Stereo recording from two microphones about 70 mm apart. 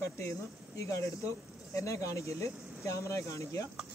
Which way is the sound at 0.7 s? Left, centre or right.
Left.